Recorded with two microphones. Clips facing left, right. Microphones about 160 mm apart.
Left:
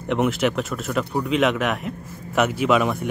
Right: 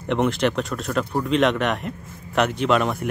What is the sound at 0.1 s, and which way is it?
Speech, 5° left (ahead or behind).